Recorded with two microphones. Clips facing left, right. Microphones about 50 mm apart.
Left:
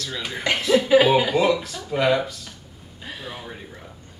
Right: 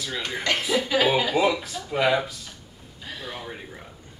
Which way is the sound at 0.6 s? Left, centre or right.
Centre.